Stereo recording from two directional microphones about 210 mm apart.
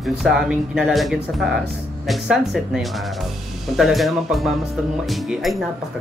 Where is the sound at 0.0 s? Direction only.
Centre (ahead or behind).